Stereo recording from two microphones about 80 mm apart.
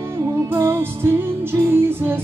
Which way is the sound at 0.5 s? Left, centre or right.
Right.